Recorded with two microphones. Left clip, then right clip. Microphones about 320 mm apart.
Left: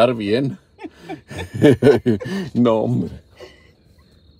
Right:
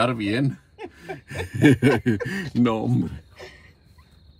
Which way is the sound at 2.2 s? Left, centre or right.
Left.